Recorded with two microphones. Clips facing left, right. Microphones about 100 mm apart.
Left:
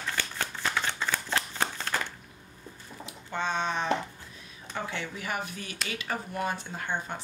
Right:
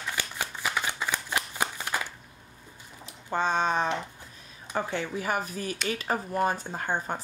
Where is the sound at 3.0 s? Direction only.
40° right (ahead or behind).